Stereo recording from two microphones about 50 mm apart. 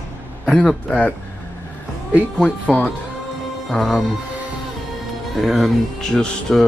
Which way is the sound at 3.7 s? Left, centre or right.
Centre.